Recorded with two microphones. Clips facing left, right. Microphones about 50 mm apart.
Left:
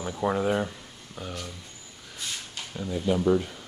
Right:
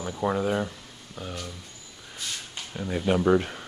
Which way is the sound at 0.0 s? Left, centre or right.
Centre.